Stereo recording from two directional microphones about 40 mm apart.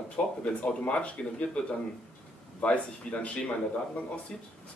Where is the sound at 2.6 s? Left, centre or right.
Left.